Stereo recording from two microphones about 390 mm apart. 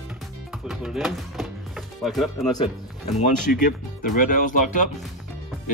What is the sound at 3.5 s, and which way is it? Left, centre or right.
Speech, left.